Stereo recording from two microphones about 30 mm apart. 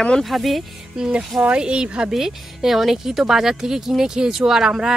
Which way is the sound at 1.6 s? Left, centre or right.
Right.